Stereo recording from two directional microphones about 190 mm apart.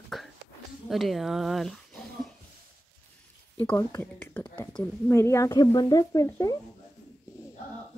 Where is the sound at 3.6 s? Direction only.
15° left (ahead or behind).